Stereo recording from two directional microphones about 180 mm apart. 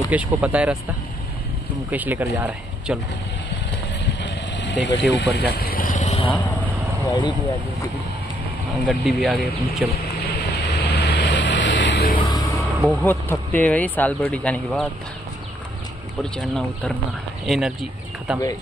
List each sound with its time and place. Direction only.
0.1 s speech: 10° right (ahead or behind)
1.9 s speech: 10° right (ahead or behind)
4.2 s vehicle: 75° left (ahead or behind); by 6.3 s 35° left (ahead or behind)
7.1 s speech: 25° left (ahead or behind)
8.8 s speech: centre (ahead or behind)
10.2 s vehicle: 65° left (ahead or behind)
12.2 s music: 20° left (ahead or behind)
12.5 s vehicle: centre (ahead or behind)
13.0 s speech: 10° left (ahead or behind)
16.2 s speech: 5° left (ahead or behind)